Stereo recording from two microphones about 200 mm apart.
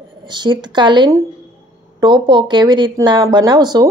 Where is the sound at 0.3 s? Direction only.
20° right (ahead or behind).